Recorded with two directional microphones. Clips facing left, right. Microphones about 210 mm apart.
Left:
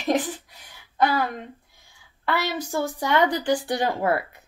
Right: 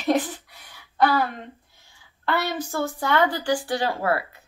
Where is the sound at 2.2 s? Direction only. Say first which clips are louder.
Right 1 dB; 10° left (ahead or behind).